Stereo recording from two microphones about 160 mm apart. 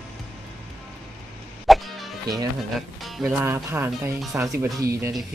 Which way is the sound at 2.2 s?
25° right (ahead or behind).